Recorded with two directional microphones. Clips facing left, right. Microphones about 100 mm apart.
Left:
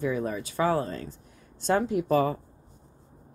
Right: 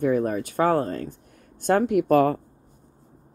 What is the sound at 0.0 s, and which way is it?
Speech, 50° right (ahead or behind).